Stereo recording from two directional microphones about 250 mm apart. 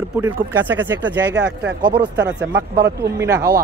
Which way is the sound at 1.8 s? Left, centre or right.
Centre.